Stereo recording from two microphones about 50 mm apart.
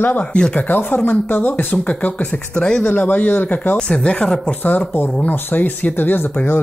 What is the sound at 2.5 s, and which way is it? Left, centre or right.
Speech, centre.